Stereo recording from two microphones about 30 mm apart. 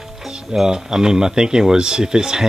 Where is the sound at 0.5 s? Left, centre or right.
Centre.